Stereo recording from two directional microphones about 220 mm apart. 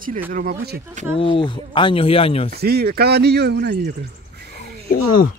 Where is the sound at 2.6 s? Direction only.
45° right (ahead or behind).